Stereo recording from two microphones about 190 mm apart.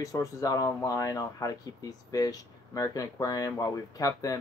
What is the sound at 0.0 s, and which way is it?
Speech, 20° left (ahead or behind).